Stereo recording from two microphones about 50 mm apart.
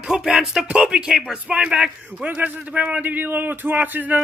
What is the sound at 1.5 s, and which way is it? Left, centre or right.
Speech, right.